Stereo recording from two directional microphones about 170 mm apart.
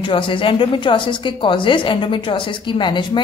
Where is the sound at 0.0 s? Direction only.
30° left (ahead or behind).